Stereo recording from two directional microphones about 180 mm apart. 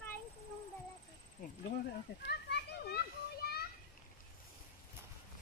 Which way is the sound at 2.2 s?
65° left (ahead or behind).